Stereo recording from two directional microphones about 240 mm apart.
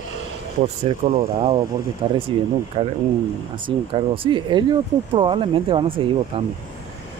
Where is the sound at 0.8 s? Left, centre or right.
Right.